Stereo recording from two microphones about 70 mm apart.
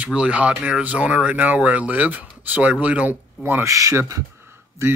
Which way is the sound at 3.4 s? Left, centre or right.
Right.